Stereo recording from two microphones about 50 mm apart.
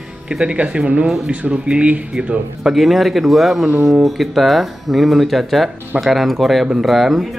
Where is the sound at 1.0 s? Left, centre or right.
Centre.